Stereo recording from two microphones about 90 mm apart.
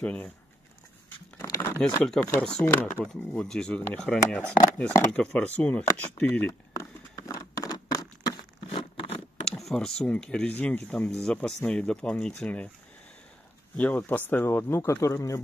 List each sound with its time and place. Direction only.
0.0 s speech: 15° left (ahead or behind)
1.4 s a sound: 30° left (ahead or behind)
1.8 s speech: 10° left (ahead or behind)
2.6 s speech: 20° left (ahead or behind)
6.7 s a sound: 35° left (ahead or behind)
8.6 s a sound: 90° left
9.5 s speech: 5° left (ahead or behind)
13.7 s speech: 20° left (ahead or behind)
14.8 s speech: 35° left (ahead or behind)